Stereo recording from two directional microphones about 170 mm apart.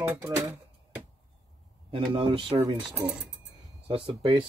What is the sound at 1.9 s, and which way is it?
Speech, 30° right (ahead or behind).